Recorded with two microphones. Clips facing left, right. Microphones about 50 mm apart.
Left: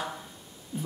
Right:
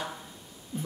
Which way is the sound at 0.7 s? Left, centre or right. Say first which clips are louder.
Left 1 dB; centre.